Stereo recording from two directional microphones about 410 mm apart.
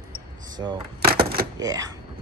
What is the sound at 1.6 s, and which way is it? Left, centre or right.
Speech, centre.